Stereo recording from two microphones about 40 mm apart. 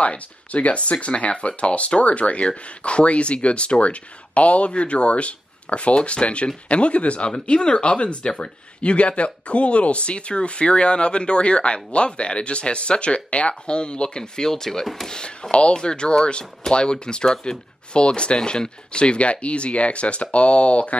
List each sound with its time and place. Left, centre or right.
0.0 s speech: left